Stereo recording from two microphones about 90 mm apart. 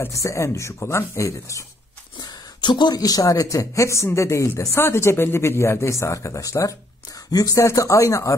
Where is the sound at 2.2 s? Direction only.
55° left (ahead or behind); by 8.3 s 35° left (ahead or behind).